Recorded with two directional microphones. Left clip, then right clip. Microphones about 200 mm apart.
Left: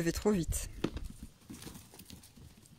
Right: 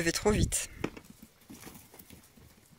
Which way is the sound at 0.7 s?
20° right (ahead or behind).